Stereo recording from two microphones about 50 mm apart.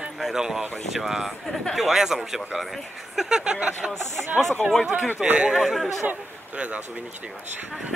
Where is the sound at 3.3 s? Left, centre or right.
Centre.